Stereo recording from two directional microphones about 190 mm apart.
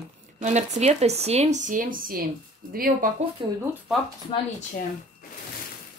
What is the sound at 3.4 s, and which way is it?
Speech, 25° right (ahead or behind).